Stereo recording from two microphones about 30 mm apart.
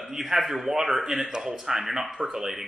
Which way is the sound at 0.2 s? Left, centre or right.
Centre.